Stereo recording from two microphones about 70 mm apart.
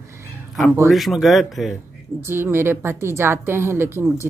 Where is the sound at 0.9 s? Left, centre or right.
Centre.